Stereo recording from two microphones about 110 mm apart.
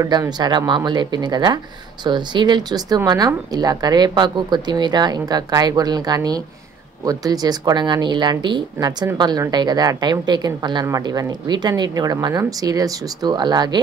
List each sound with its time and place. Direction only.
0.0 s a woman's voice: 35° right (ahead or behind)